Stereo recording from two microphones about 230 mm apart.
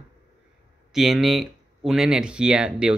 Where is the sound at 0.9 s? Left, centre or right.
Centre.